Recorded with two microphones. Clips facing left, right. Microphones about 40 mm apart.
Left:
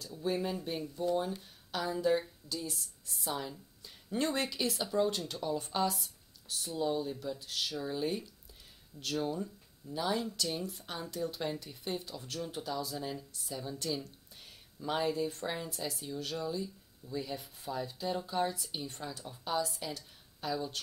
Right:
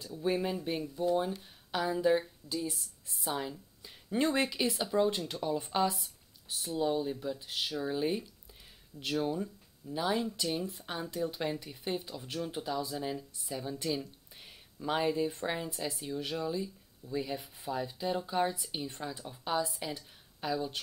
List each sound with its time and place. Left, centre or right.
0.2 s speech: centre